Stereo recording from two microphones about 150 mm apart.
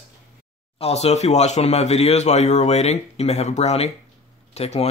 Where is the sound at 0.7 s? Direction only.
45° left (ahead or behind).